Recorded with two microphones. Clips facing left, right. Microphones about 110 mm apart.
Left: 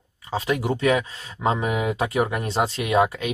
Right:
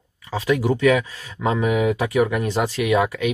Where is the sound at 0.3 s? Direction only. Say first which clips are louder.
Right 3 dB; 30° left (ahead or behind).